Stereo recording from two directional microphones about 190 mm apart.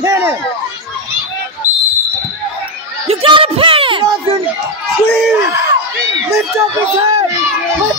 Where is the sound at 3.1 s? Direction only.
30° right (ahead or behind).